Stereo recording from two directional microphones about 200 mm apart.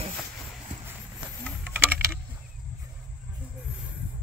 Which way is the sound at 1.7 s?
10° right (ahead or behind).